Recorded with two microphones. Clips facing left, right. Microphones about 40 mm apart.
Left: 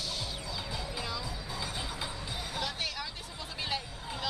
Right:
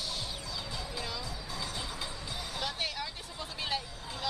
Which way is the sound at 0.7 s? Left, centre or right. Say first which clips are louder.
Left 1 dB; centre.